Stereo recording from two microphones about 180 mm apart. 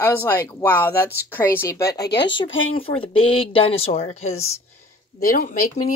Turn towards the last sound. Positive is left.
turn(degrees=50)  # may be behind; listen again after turning